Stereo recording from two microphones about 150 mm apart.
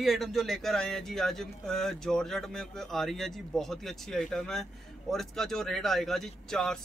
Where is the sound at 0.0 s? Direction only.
Centre (ahead or behind).